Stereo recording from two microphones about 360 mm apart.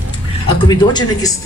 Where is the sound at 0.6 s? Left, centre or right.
Centre.